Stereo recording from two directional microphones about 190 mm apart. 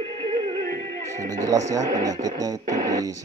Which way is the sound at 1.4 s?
20° right (ahead or behind).